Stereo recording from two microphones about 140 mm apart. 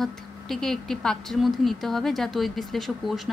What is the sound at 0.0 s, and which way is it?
A woman's voice, centre (ahead or behind).